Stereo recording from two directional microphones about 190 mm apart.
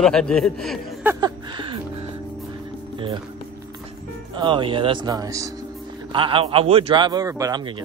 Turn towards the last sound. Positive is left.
turn(degrees=-20)  # may be behind; listen again after turning